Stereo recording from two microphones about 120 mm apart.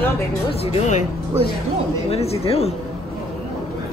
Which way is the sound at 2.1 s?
60° left (ahead or behind).